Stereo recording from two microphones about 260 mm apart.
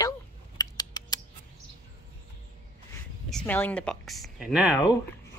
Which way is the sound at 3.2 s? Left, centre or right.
Centre.